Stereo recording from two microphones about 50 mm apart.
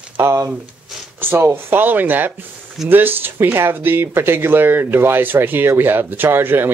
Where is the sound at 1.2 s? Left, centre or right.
Right.